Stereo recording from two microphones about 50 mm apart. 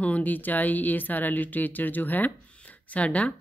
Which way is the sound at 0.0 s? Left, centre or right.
Left.